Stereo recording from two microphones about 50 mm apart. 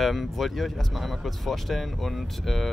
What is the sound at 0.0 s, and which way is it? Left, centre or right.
Speech, centre.